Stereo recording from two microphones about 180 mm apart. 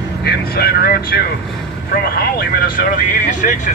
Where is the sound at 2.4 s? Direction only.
50° left (ahead or behind).